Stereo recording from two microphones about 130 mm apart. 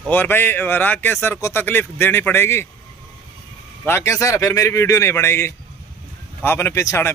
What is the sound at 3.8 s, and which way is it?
A man's voice, 20° left (ahead or behind).